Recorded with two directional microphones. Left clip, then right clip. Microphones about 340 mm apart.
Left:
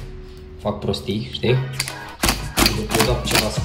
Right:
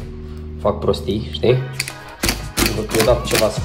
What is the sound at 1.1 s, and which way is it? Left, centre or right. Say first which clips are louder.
Music: right 2 dB; centre.